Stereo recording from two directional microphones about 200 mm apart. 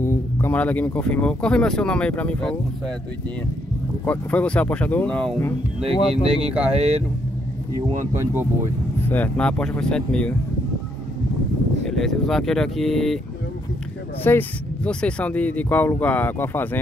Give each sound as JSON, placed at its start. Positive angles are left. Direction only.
{"t": 0.0, "sound": "speech", "side_deg": 10}
{"t": 4.0, "sound": "speech", "side_deg": 5}
{"t": 6.2, "sound": "speech", "side_deg": -30}
{"t": 8.1, "sound": "speech", "side_deg": -15}
{"t": 8.9, "sound": "speech", "side_deg": 10}
{"t": 11.8, "sound": "speech", "side_deg": 0}
{"t": 14.2, "sound": "speech", "side_deg": 10}